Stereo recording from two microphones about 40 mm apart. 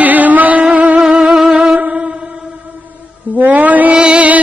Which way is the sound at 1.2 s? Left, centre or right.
Centre.